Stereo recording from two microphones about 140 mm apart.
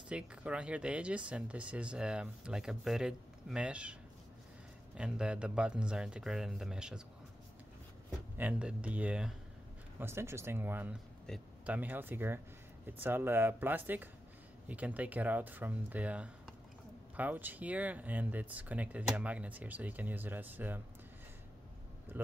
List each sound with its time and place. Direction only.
0.1 s speech: 10° right (ahead or behind)
4.9 s speech: 5° right (ahead or behind)
8.4 s speech: 10° right (ahead or behind)
11.3 s speech: 5° left (ahead or behind)
11.6 s speech: 10° right (ahead or behind)
22.2 s speech: 15° right (ahead or behind)